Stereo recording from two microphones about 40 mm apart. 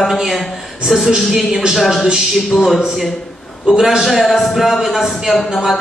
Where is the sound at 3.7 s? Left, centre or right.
Centre.